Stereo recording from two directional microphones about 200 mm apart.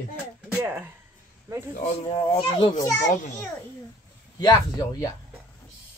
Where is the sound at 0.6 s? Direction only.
10° right (ahead or behind).